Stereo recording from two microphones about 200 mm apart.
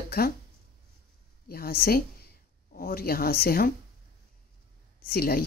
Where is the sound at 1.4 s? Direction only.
50° left (ahead or behind).